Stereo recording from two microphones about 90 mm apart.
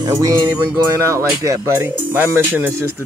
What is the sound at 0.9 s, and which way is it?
Speech, 35° right (ahead or behind).